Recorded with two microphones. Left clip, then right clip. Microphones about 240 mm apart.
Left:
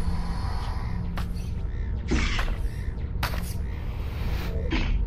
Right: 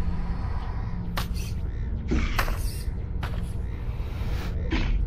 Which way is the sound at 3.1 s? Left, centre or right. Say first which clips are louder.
Left 7 dB; left.